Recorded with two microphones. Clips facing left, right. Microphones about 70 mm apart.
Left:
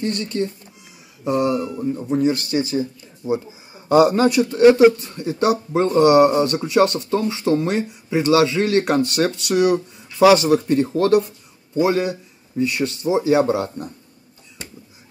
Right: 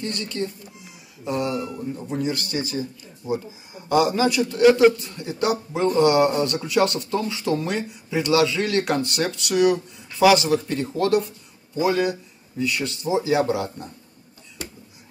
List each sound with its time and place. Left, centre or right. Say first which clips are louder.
0.0 s speech: left 5 dB; left
1.8 s speech: left 7 dB; left
3.9 s speech: left 5 dB; left
10.2 s speech: left 4 dB; left
11.8 s speech: left 2 dB; left